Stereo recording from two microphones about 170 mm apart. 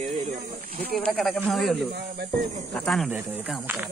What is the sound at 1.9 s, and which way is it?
Speech, 70° right (ahead or behind).